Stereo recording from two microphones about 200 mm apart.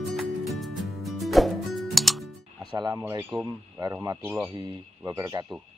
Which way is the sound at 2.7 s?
20° right (ahead or behind).